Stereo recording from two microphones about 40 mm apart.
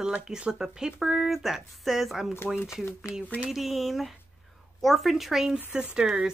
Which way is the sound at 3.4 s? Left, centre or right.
Centre.